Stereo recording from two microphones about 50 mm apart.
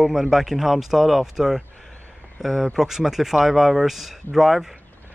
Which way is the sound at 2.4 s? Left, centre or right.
Centre.